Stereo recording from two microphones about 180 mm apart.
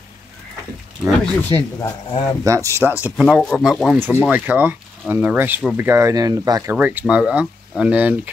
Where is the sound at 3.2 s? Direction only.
5° left (ahead or behind).